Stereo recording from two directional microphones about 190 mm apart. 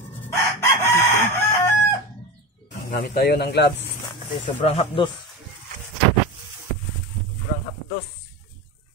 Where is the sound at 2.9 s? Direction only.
55° left (ahead or behind).